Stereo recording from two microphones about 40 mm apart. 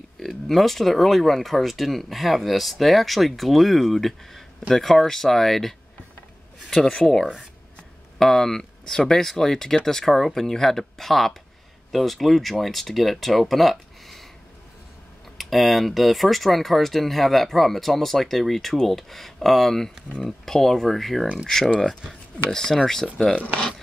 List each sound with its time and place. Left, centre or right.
0.2 s speech: centre
15.3 s speech: centre
22.5 s speech: centre